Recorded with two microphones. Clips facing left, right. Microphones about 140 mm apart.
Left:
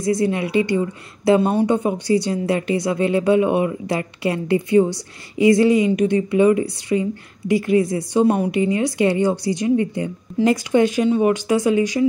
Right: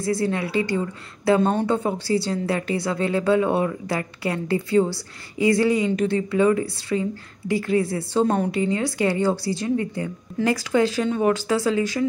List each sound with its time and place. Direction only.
0.0 s speech: 20° left (ahead or behind)